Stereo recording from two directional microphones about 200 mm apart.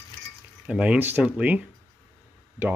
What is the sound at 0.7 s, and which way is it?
Speech, 5° right (ahead or behind).